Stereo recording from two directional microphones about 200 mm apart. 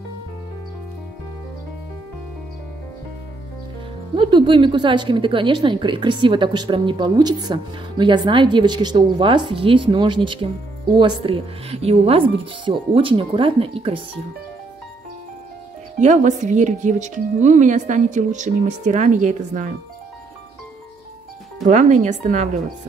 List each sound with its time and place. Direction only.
4.1 s speech: 25° right (ahead or behind)
16.0 s speech: 40° right (ahead or behind)
21.6 s speech: 35° right (ahead or behind)